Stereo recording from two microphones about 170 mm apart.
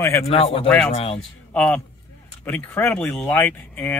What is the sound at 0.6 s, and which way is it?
Speech, 5° left (ahead or behind).